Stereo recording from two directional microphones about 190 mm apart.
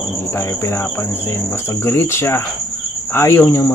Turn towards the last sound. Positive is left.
turn(degrees=10)  # may be behind; listen again after turning